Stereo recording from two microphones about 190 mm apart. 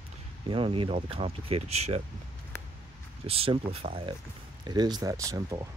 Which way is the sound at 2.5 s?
10° left (ahead or behind).